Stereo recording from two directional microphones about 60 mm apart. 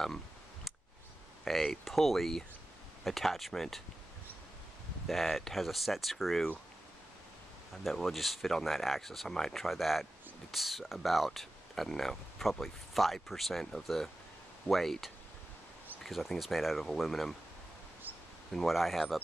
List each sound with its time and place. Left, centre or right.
1.4 s speech: centre
5.0 s speech: centre
7.8 s speech: centre
18.1 s a sound: right
18.5 s speech: centre